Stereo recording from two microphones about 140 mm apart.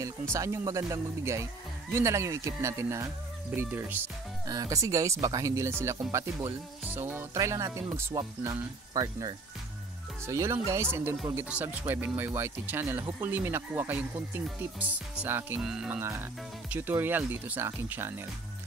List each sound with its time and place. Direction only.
0.3 s speech: 20° right (ahead or behind)
15.6 s speech: 5° right (ahead or behind)
16.0 s speech: 20° right (ahead or behind)